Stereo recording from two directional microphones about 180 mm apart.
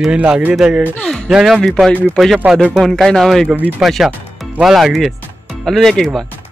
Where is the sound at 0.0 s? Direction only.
5° right (ahead or behind).